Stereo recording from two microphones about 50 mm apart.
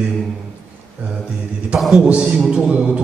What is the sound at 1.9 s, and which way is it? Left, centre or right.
Speech, centre.